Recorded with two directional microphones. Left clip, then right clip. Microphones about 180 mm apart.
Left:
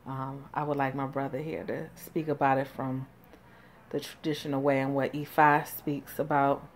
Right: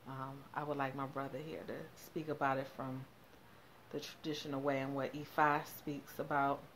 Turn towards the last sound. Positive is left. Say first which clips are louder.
# left 9 dB
turn(degrees=20)  # may be behind; listen again after turning